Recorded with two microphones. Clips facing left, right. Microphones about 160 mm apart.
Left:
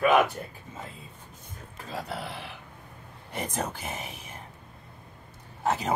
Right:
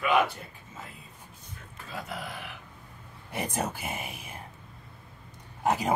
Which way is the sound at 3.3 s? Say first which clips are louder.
Right 1 dB; 10° right (ahead or behind).